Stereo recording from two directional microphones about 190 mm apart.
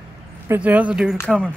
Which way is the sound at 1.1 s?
5° left (ahead or behind).